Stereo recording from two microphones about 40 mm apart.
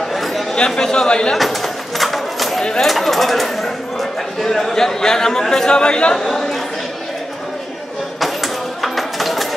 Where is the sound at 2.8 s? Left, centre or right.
Centre; by 6.2 s left.